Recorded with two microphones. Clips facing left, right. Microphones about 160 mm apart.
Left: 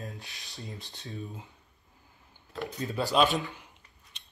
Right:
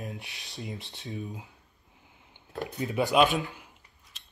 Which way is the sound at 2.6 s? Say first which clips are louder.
Right 3 dB; 20° right (ahead or behind).